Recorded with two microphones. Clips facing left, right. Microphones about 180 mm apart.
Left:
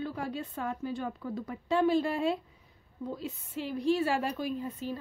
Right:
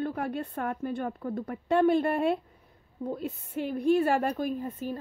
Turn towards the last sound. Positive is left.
turn(degrees=-50)  # may be behind; listen again after turning